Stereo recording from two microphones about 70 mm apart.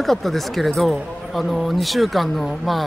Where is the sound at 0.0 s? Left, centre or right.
Centre.